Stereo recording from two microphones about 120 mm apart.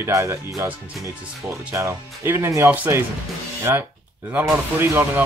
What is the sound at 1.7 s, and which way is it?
Speech, 20° right (ahead or behind).